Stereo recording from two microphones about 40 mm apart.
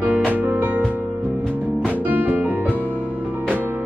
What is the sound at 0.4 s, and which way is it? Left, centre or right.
Music, right.